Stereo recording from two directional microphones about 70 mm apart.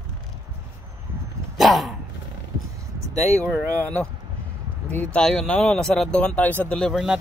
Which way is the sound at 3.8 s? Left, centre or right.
Centre.